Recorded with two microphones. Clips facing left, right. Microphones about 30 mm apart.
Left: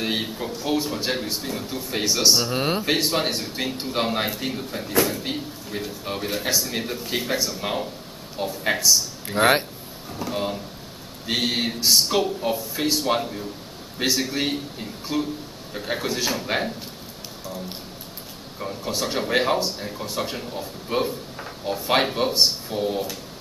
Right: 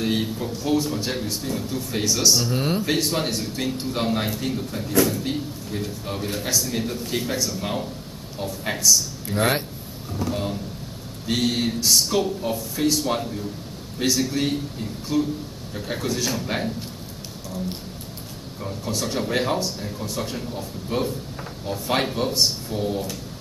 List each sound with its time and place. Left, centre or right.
0.0 s a man's voice: left
0.5 s speech: centre
18.6 s speech: centre